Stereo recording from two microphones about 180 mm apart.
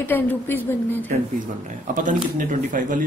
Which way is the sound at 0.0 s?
10° left (ahead or behind).